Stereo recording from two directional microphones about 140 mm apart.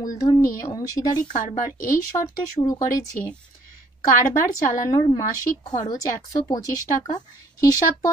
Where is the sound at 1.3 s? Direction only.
65° left (ahead or behind).